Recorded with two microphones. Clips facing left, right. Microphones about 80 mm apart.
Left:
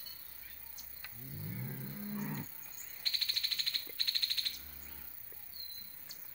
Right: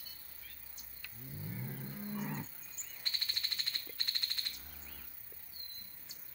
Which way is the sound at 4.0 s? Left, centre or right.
Right.